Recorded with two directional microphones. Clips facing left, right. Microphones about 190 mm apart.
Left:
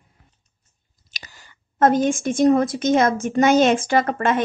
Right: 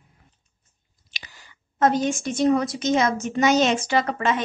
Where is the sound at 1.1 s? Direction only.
45° left (ahead or behind).